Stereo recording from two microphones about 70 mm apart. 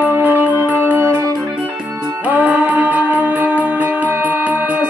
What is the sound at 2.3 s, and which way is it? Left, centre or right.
Music, right.